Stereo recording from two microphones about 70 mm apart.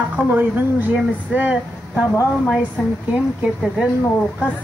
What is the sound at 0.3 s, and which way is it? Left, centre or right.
Speech, right.